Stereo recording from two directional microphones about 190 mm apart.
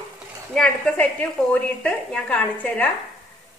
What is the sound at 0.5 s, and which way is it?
A woman's voice, 5° left (ahead or behind).